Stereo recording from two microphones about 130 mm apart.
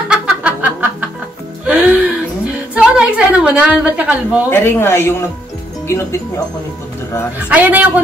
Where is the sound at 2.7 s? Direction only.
10° right (ahead or behind).